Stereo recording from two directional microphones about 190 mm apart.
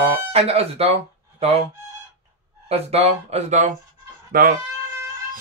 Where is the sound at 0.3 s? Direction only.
30° right (ahead or behind).